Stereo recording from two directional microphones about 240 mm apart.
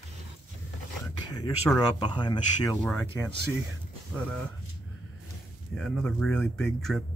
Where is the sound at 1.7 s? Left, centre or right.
Centre.